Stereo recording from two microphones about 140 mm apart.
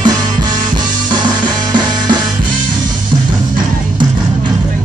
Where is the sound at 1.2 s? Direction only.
30° right (ahead or behind).